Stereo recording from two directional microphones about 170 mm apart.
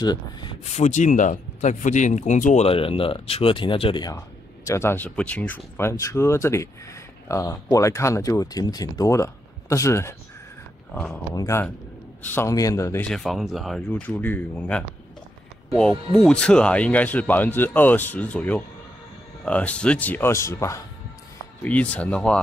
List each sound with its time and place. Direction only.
0.0 s a man's voice: 25° left (ahead or behind)
0.7 s speech: 45° left (ahead or behind); by 4.2 s 25° left (ahead or behind)
4.6 s speech: 15° left (ahead or behind)
11.3 s a man's voice: 15° left (ahead or behind)
13.0 s speech: centre (ahead or behind)
13.8 s speech: 10° left (ahead or behind)